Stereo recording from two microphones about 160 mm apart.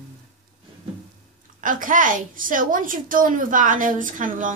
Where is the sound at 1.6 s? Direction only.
55° right (ahead or behind).